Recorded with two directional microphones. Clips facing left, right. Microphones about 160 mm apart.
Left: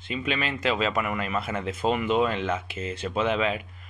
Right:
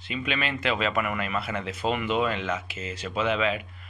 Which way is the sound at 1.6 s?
45° left (ahead or behind).